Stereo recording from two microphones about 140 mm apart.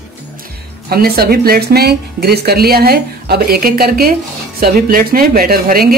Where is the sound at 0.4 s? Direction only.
90° right.